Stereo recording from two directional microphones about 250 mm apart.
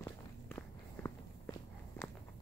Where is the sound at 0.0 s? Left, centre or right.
Centre.